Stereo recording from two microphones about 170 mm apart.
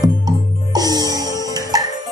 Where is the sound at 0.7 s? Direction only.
25° right (ahead or behind).